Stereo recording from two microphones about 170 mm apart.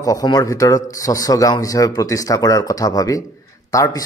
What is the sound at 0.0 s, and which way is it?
Speech, 20° left (ahead or behind).